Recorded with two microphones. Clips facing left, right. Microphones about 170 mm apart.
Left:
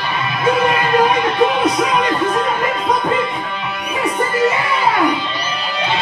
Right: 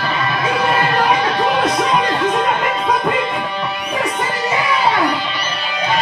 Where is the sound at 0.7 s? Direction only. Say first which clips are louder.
Left 1 dB; 30° right (ahead or behind).